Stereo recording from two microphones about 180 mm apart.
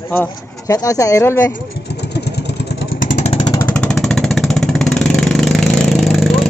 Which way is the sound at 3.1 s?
35° left (ahead or behind).